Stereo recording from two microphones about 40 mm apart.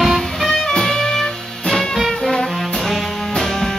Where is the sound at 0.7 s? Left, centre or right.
Centre.